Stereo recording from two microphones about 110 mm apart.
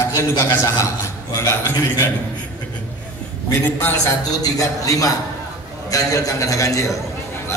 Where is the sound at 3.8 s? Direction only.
20° left (ahead or behind).